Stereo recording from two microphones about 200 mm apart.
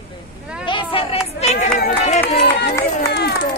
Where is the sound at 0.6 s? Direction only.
25° left (ahead or behind).